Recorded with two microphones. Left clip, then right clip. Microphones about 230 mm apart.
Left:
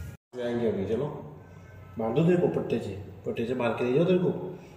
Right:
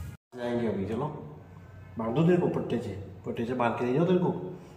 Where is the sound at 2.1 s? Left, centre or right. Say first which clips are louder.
Left 1 dB; centre.